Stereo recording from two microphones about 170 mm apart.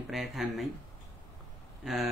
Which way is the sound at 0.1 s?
Centre (ahead or behind).